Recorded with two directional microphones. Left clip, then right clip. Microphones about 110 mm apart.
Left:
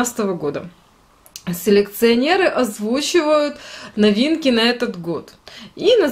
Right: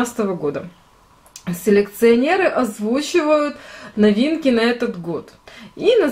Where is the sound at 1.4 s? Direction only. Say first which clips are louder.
Left 1 dB; 45° left (ahead or behind).